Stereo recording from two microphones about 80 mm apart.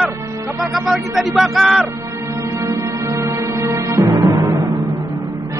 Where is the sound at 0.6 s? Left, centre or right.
Centre.